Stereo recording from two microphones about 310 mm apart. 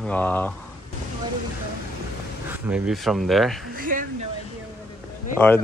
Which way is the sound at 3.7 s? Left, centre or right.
Right.